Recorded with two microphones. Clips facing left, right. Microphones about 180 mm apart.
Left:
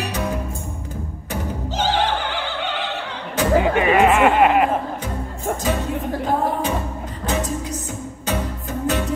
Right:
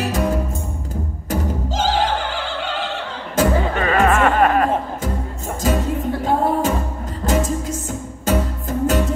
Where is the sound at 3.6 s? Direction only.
15° left (ahead or behind).